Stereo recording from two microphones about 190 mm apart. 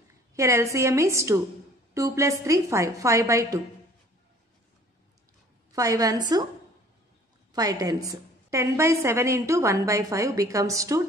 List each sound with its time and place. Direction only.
0.3 s a woman's voice: 15° right (ahead or behind)
5.7 s a woman's voice: 20° right (ahead or behind)
7.5 s a woman's voice: 20° right (ahead or behind)